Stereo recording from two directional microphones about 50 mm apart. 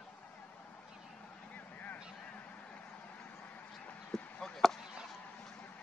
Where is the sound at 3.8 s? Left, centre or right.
Left.